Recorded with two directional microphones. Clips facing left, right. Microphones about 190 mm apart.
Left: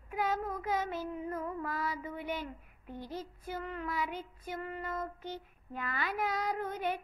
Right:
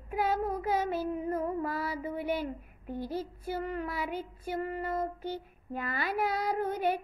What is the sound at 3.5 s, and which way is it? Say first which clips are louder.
Speech: right 4 dB; 35° right (ahead or behind).